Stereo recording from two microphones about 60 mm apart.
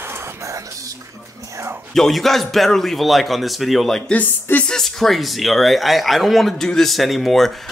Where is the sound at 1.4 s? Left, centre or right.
Right.